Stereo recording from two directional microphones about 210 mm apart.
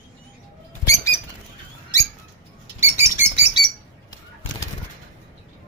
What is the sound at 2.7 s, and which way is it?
Bird, 10° right (ahead or behind).